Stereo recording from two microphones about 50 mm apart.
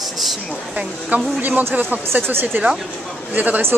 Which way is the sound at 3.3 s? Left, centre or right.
Right.